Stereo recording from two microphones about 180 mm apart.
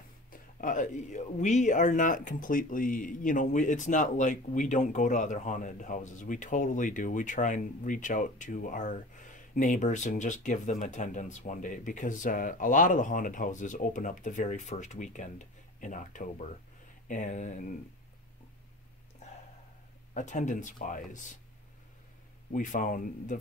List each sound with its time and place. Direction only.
0.3 s speech: 50° left (ahead or behind)
20.2 s speech: 40° left (ahead or behind)
22.5 s speech: 45° left (ahead or behind)